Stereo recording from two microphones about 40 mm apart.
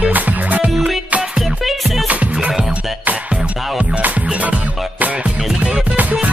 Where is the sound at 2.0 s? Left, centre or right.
Right.